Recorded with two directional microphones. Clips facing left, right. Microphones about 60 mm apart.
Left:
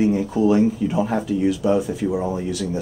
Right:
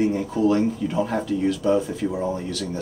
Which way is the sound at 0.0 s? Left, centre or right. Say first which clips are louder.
Left 2 dB; centre.